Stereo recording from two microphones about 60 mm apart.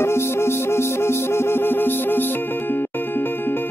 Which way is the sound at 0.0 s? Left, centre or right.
Left.